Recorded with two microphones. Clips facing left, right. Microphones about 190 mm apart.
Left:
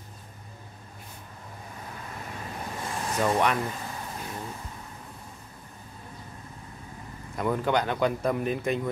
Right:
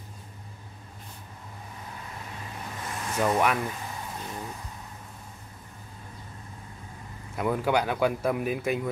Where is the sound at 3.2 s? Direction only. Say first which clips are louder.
Even; 5° right (ahead or behind).